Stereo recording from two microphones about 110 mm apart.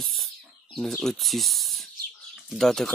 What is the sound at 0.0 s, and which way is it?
Speech, centre (ahead or behind).